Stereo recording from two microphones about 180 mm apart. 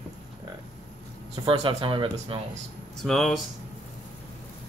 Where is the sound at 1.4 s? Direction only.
30° right (ahead or behind).